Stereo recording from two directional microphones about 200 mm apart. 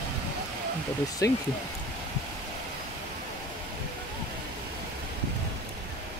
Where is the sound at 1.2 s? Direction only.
15° left (ahead or behind).